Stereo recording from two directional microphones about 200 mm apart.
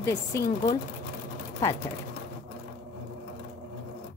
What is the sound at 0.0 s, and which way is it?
Speech, 15° left (ahead or behind).